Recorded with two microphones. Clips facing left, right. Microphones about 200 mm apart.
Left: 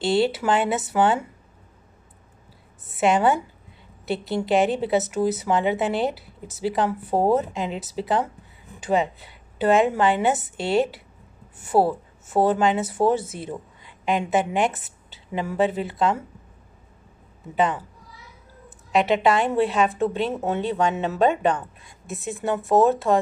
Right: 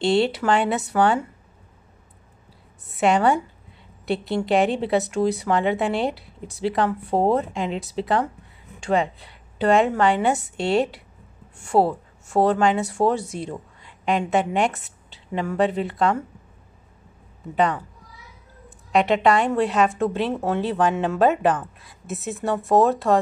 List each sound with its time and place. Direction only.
0.0 s a woman's voice: centre (ahead or behind)
2.9 s a woman's voice: centre (ahead or behind)
17.6 s a woman's voice: centre (ahead or behind)
18.9 s a woman's voice: centre (ahead or behind)